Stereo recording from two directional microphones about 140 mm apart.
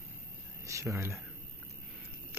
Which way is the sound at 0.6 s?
20° right (ahead or behind).